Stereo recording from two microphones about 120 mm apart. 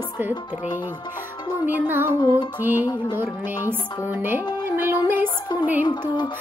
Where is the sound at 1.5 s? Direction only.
15° right (ahead or behind).